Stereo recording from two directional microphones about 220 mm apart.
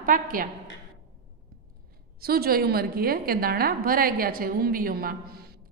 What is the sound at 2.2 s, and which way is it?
A woman's voice, 45° right (ahead or behind).